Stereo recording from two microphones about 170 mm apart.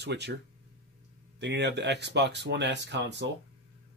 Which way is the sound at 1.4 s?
90° right.